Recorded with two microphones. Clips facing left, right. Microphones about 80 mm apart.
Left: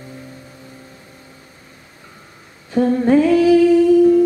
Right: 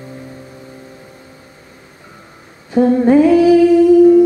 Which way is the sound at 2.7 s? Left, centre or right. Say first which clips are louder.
Right 4 dB; centre.